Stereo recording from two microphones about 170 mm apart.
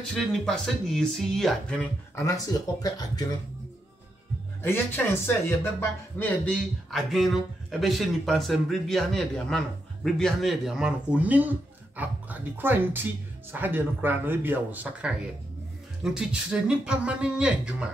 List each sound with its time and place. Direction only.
0.2 s speech: centre (ahead or behind)
2.1 s speech: 20° left (ahead or behind)
4.6 s speech: 15° left (ahead or behind); by 17.8 s 5° right (ahead or behind)